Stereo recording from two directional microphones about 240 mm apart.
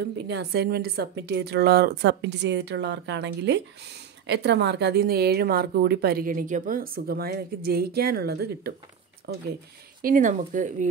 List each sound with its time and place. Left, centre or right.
0.0 s a woman's voice: right